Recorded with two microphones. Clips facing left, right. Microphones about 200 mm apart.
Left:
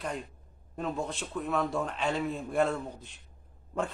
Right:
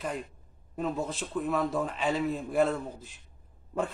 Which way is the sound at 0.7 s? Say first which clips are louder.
Right 2 dB; 5° right (ahead or behind).